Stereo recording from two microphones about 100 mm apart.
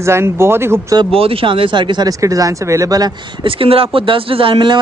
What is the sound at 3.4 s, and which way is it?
Speech, 65° right (ahead or behind).